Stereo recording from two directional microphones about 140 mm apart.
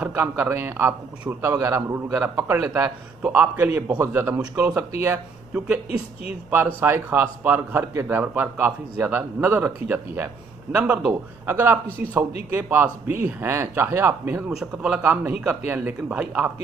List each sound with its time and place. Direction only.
0.0 s a man's voice: 15° right (ahead or behind)
14.5 s a man's voice: 5° right (ahead or behind)